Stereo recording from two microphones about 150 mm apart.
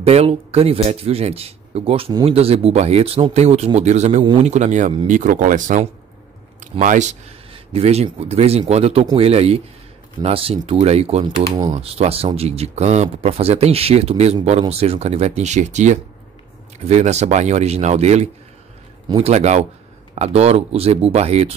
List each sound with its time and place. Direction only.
0.0 s speech: 45° right (ahead or behind)
7.5 s speech: 45° right (ahead or behind)
11.5 s speech: 25° right (ahead or behind)
11.8 s speech: 40° right (ahead or behind)